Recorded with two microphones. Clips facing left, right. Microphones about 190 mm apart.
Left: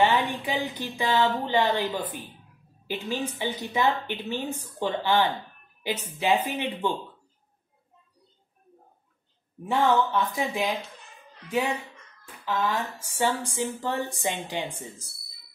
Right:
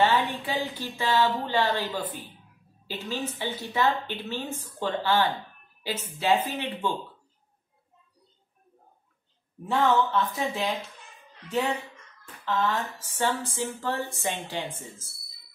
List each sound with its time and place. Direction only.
0.0 s a woman's voice: 15° left (ahead or behind)
9.7 s speech: 10° left (ahead or behind)